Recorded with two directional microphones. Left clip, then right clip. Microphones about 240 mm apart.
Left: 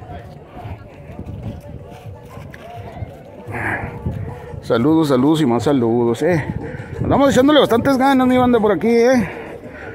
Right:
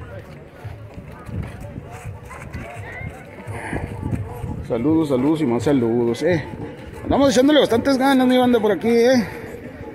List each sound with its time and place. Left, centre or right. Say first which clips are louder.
3.5 s livestock: left 7 dB; centre
4.6 s speech: left 4 dB; left
5.5 s a man's voice: left 3 dB; centre